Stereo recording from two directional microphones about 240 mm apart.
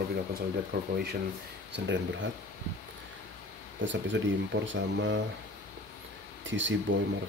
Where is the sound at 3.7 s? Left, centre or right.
Right.